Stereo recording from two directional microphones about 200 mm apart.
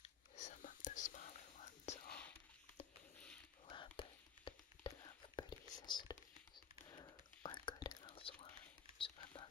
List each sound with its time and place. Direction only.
0.0 s whispering: 35° left (ahead or behind)
3.6 s whispering: 25° left (ahead or behind)